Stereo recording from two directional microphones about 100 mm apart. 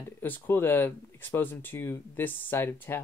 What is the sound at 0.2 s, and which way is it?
Speech, 25° left (ahead or behind).